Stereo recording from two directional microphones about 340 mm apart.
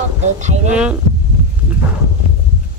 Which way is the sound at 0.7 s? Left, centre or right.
Centre.